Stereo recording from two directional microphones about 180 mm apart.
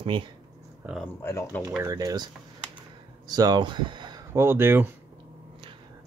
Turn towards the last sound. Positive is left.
turn(degrees=-10)  # may be behind; listen again after turning